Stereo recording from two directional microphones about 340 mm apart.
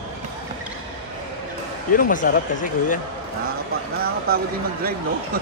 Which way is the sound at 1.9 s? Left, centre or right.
Left.